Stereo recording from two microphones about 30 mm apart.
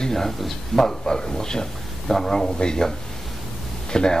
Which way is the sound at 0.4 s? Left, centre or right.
Centre.